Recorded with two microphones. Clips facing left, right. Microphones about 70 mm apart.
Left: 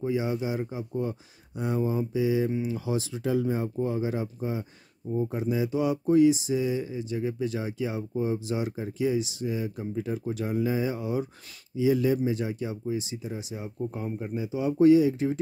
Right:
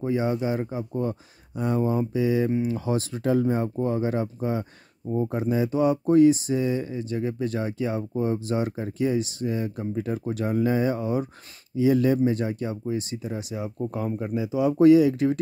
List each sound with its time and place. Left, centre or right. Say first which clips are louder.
0.0 s speech: right 3 dB; right